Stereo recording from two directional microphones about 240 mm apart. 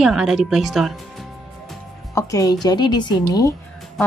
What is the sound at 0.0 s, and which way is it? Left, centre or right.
Speech, centre.